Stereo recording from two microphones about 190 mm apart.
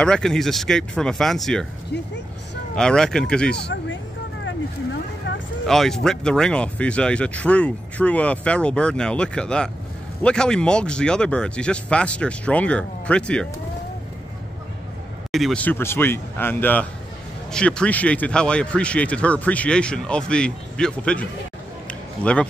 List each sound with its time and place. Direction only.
0.0 s speech: 5° left (ahead or behind)
1.9 s speech: 65° left (ahead or behind)
2.7 s speech: 5° left (ahead or behind)
3.5 s a sound: 60° left (ahead or behind)
5.7 s speech: centre (ahead or behind)
15.3 s speech: 5° left (ahead or behind)